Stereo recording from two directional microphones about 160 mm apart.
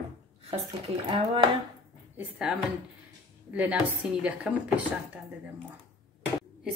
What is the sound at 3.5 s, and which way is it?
Speech, 10° right (ahead or behind).